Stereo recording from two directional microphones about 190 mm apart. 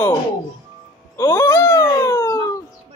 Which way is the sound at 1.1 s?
15° left (ahead or behind).